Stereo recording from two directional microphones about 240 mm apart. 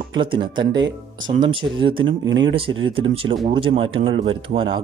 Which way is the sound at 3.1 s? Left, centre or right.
Right.